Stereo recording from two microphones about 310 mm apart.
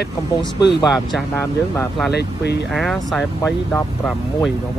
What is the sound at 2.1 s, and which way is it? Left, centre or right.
Speech, left.